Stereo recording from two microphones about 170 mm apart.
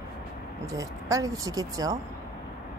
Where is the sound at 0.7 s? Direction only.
20° right (ahead or behind).